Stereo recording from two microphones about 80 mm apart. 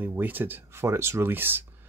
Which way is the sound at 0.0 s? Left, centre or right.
Right.